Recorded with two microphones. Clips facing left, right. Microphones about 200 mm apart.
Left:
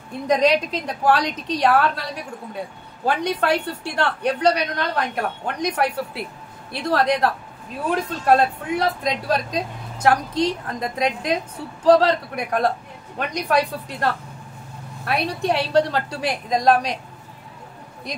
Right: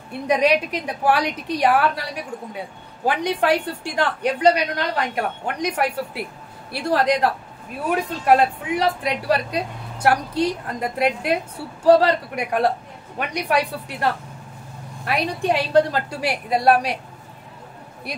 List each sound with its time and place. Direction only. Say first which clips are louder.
0.1 s speech: even; 10° right (ahead or behind)